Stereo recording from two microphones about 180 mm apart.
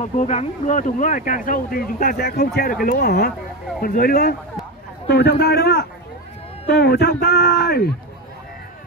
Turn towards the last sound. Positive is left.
turn(degrees=60)  # may be behind; listen again after turning